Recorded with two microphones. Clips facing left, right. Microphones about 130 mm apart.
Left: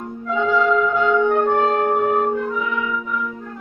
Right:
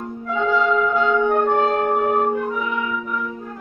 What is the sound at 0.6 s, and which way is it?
Music, 15° right (ahead or behind).